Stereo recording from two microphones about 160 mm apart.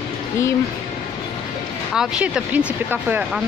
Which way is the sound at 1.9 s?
5° right (ahead or behind).